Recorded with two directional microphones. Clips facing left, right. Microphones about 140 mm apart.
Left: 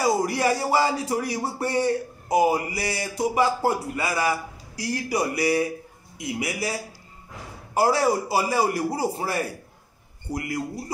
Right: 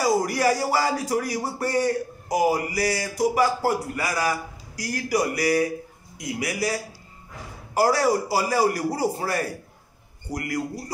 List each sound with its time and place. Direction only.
0.0 s speech: 25° left (ahead or behind)